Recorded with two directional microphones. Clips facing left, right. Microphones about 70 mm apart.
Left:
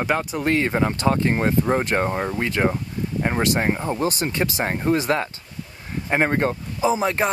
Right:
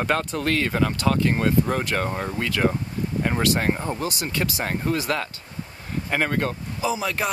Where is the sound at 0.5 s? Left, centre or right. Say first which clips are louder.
Left 2 dB; left.